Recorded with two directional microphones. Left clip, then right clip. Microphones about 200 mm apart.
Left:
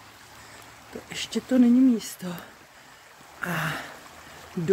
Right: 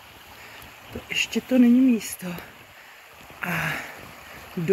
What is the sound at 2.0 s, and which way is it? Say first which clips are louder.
Speech: right 2 dB; 20° left (ahead or behind).